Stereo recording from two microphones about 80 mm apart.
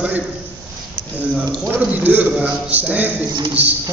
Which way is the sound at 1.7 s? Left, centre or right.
Right.